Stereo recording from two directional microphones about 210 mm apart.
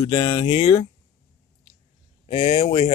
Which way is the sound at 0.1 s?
25° left (ahead or behind).